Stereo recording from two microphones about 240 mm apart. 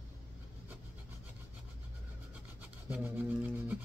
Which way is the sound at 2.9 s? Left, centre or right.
Centre.